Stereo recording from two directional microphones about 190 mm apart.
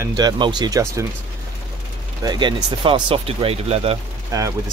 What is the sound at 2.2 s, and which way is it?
Speech, 25° right (ahead or behind).